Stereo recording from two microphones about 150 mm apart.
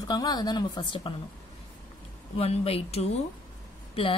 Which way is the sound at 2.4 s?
40° left (ahead or behind).